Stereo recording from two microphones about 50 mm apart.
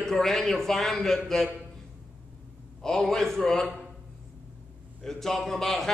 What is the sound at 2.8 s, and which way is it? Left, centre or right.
Speech, centre.